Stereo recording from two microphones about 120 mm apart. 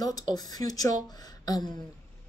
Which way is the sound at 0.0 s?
30° left (ahead or behind).